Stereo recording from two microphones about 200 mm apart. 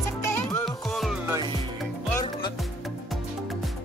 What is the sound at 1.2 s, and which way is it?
Music, 20° right (ahead or behind).